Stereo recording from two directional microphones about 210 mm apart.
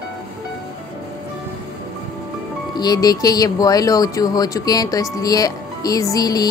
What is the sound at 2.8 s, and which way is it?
Speech, 20° left (ahead or behind).